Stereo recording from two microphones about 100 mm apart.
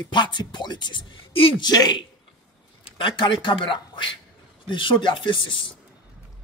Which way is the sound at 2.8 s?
55° left (ahead or behind).